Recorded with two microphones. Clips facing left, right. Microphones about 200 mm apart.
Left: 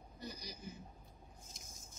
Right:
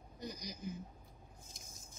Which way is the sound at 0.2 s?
15° right (ahead or behind).